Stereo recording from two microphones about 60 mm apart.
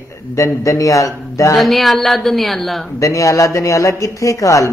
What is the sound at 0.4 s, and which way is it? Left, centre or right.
Speech, left.